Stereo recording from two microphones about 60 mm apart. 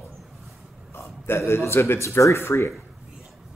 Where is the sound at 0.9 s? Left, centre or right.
Left.